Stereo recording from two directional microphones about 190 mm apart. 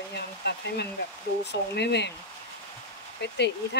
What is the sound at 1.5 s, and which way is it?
Speech, 65° left (ahead or behind).